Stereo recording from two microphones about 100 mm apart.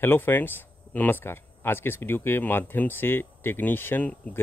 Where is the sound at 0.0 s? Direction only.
20° left (ahead or behind).